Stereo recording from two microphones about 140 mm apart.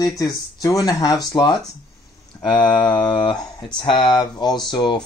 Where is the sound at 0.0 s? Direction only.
25° left (ahead or behind).